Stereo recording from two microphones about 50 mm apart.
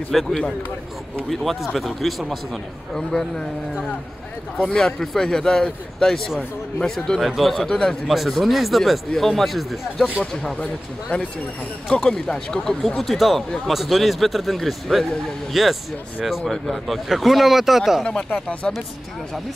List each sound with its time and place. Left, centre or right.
0.1 s speech: centre
4.6 s a man's voice: centre
7.2 s speech: centre
8.1 s speech: centre
10.1 s a man's voice: centre
10.6 s speech: left
12.1 s a man's voice: centre
18.3 s speech: left